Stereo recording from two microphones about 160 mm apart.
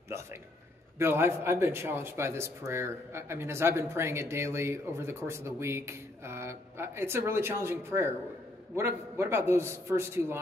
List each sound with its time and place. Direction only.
0.9 s a man's voice: 15° right (ahead or behind)